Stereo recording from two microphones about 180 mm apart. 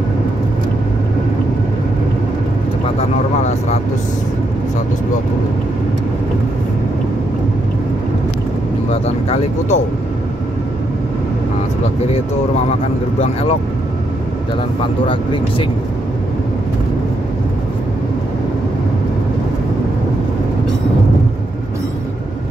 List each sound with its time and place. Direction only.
8.9 s speech: 35° left (ahead or behind)
13.2 s speech: 35° left (ahead or behind)
15.0 s speech: 25° left (ahead or behind)